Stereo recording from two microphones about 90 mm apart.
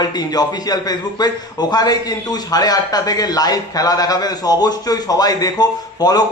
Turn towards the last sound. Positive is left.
turn(degrees=50)  # may be behind; listen again after turning